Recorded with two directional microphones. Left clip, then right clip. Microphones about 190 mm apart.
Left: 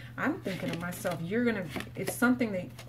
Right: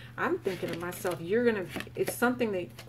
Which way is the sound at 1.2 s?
40° right (ahead or behind).